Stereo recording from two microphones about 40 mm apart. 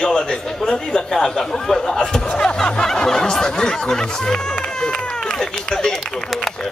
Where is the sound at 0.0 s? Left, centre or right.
Left.